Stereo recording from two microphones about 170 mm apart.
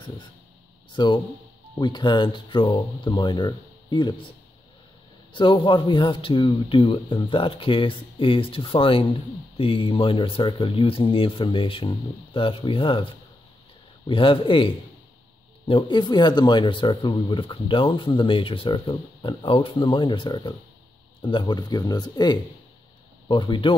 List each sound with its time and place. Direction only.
0.9 s speech: 25° left (ahead or behind)
5.3 s speech: 30° left (ahead or behind)